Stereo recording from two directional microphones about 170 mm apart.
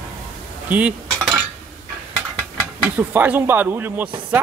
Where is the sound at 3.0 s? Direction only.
10° right (ahead or behind).